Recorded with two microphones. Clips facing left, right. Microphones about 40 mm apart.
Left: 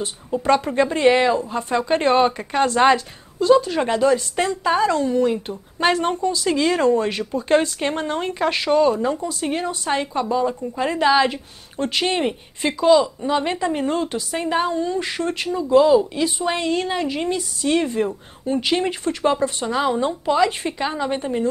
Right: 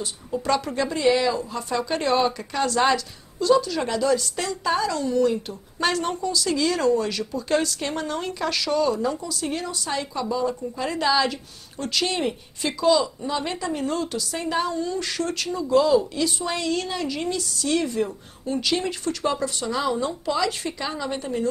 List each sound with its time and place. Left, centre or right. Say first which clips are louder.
0.0 s a woman's voice: left 5 dB; left
1.4 s a woman's voice: left 4 dB; left